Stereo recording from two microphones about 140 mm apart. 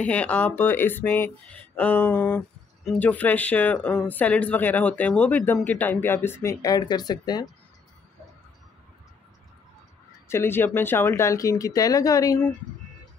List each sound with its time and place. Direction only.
0.0 s speech: 10° left (ahead or behind); by 7.4 s 30° left (ahead or behind)
10.2 s speech: 20° left (ahead or behind)